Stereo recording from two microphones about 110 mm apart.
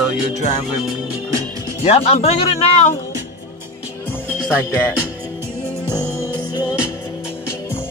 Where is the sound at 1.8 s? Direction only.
65° left (ahead or behind).